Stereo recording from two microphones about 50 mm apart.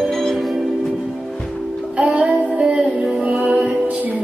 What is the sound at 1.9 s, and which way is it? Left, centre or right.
Child singing, right.